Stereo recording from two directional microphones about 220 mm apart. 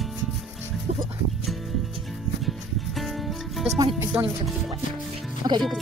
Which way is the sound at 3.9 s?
10° right (ahead or behind).